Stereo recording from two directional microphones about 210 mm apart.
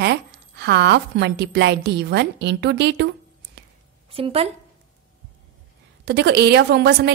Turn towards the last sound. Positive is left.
turn(degrees=-55)  # may be behind; listen again after turning